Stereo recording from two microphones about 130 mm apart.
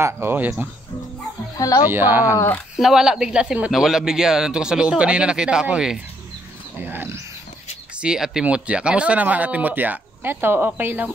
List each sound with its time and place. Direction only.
0.0 s speech: 15° right (ahead or behind)
1.6 s speech: 25° left (ahead or behind)
1.9 s speech: 15° right (ahead or behind)
2.8 s speech: 5° right (ahead or behind)
6.8 s speech: 15° right (ahead or behind)
8.0 s speech: 5° right (ahead or behind)